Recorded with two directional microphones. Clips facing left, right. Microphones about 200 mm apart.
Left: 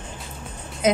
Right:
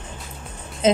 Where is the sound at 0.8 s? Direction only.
25° right (ahead or behind).